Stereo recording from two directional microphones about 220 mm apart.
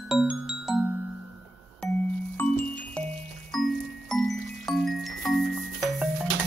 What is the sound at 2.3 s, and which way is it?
Music, 5° left (ahead or behind).